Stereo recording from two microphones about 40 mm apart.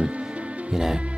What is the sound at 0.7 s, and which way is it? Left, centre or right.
Music, centre.